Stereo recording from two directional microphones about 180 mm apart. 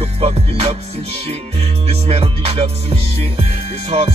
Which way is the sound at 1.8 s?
35° right (ahead or behind).